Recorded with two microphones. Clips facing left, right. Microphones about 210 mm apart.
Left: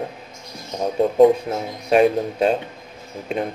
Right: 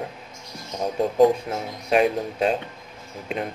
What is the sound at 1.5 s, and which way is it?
Speech, 30° left (ahead or behind).